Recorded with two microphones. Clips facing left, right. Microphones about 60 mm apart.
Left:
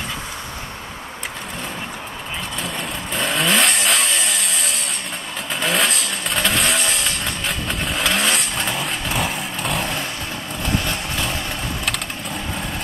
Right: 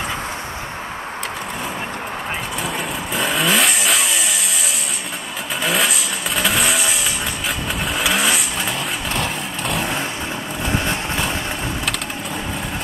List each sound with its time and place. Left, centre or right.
3.2 s vehicle: centre
5.6 s vehicle: centre
10.6 s vehicle: centre